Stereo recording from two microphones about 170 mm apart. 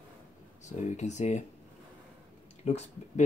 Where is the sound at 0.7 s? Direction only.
45° left (ahead or behind).